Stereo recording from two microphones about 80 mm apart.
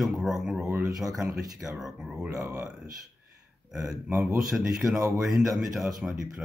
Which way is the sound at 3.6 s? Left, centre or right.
Centre.